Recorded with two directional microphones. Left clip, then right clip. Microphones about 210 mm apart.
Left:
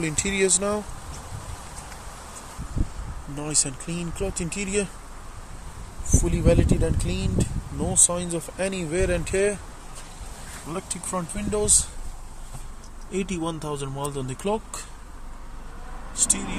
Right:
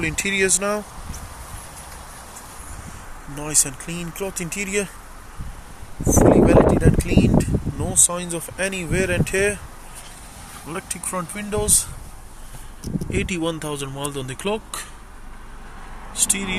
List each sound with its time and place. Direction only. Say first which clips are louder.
0.0 s speech: right 3 dB; centre (ahead or behind)
3.3 s speech: right 4 dB; centre (ahead or behind)
6.0 s speech: right 8 dB; centre (ahead or behind)
10.7 s speech: right 2 dB; 5° right (ahead or behind)
13.1 s speech: right 4 dB; 5° right (ahead or behind)
16.3 s speech: right 5 dB; 15° right (ahead or behind)